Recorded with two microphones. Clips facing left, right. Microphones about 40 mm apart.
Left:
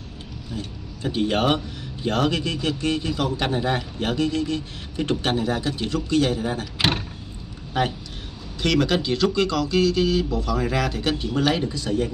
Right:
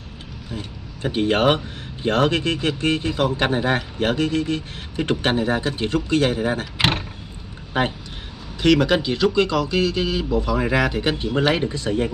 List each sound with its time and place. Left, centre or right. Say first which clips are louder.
0.5 s a man's voice: right 1 dB; right
8.5 s speech: right 4 dB; centre; by 12.1 s right